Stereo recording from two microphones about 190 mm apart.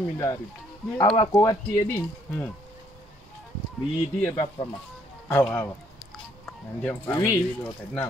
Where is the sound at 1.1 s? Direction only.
20° left (ahead or behind).